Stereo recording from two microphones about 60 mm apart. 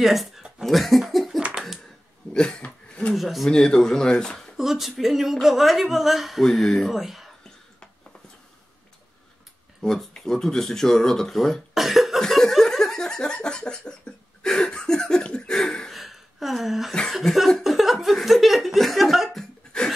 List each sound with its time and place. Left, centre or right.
0.0 s speech: centre
1.5 s a sound: centre
2.3 s speech: centre
3.2 s a woman's voice: centre
3.5 s speech: centre
4.6 s a woman's voice: centre
6.4 s a woman's voice: centre
9.8 s speech: centre
11.7 s cough: centre
12.2 s laughter: centre
14.4 s a sound: centre
15.9 s a sound: centre
17.1 s laughter: centre
18.0 s a woman's voice: centre